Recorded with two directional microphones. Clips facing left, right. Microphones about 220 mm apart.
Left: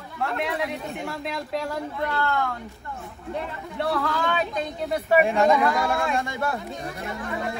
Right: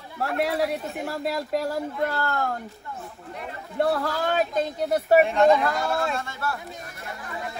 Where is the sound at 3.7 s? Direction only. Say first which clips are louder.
Right 2 dB; 45° right (ahead or behind).